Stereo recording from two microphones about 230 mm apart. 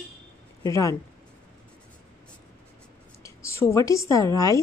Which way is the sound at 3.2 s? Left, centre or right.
Centre.